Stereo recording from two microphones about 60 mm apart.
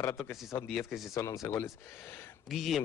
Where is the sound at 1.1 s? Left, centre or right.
Left.